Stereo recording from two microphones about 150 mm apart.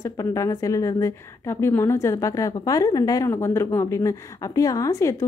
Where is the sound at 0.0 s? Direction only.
20° left (ahead or behind).